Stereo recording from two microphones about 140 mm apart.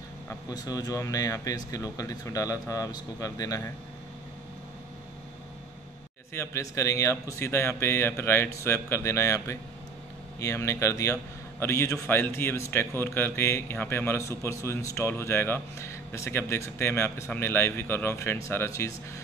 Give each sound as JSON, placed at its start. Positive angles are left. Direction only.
{"t": 0.5, "sound": "speech", "side_deg": 25}
{"t": 6.3, "sound": "a man's voice", "side_deg": 20}